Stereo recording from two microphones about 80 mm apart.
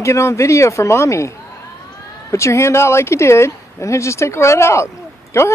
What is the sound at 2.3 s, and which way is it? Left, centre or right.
Speech, left.